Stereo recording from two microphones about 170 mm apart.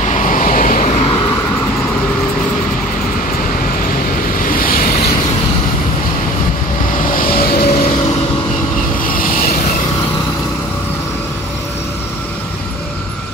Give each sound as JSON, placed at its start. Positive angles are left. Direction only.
{"t": 0.0, "sound": "vehicle", "side_deg": 45}
{"t": 4.4, "sound": "vehicle", "side_deg": 55}
{"t": 7.1, "sound": "vehicle", "side_deg": 60}
{"t": 9.0, "sound": "vehicle", "side_deg": 55}